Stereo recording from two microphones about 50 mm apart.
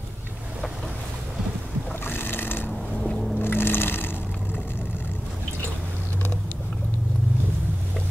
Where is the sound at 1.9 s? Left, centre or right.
Left.